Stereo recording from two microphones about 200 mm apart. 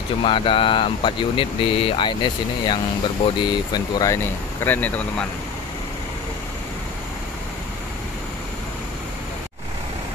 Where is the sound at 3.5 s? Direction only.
20° left (ahead or behind).